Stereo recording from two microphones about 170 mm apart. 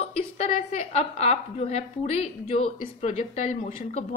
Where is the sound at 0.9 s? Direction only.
40° left (ahead or behind).